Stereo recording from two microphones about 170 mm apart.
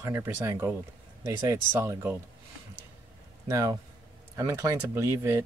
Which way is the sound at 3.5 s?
20° right (ahead or behind).